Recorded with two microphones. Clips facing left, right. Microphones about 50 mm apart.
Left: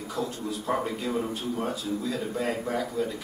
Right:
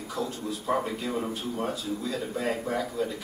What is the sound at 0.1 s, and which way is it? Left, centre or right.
Speech, centre.